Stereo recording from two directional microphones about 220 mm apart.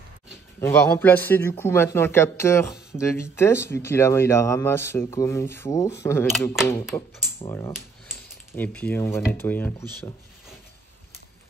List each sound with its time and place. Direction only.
0.6 s speech: 10° left (ahead or behind)
6.3 s speech: centre (ahead or behind)
6.9 s speech: 20° left (ahead or behind)